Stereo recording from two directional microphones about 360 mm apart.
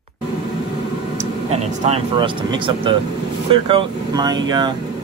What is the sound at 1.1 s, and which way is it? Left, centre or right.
Speech, centre.